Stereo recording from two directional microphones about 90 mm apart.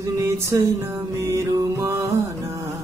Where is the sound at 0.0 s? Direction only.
35° right (ahead or behind).